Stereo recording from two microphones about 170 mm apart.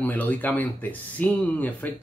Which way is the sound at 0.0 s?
10° left (ahead or behind).